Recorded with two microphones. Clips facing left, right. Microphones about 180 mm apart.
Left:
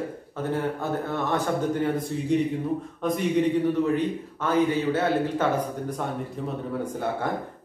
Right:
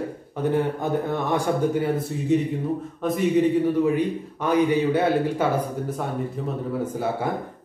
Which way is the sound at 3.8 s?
15° right (ahead or behind).